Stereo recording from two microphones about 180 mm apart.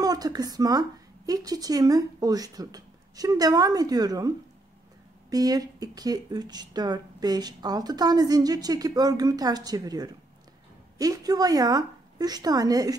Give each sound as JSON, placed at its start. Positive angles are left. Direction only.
{"t": 0.0, "sound": "a woman's voice", "side_deg": -20}
{"t": 5.3, "sound": "speech", "side_deg": -20}